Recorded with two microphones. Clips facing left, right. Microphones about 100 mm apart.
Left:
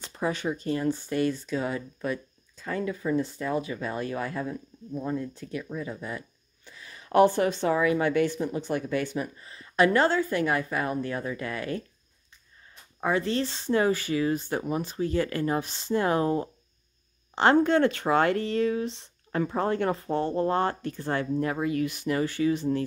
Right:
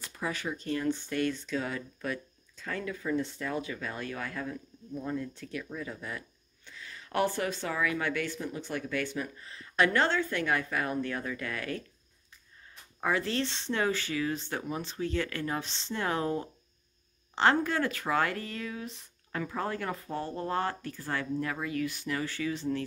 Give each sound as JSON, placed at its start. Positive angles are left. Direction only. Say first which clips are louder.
{"t": 0.0, "sound": "speech", "louder": "left 6 dB", "side_deg": 25}
{"t": 5.3, "sound": "speech", "louder": "left 4 dB", "side_deg": 5}
{"t": 11.1, "sound": "speech", "louder": "left 4 dB", "side_deg": 20}
{"t": 13.2, "sound": "speech", "louder": "left 4 dB", "side_deg": 5}
{"t": 17.4, "sound": "speech", "louder": "left 6 dB", "side_deg": 25}